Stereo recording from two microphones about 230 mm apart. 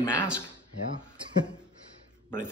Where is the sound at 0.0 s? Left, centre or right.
Centre.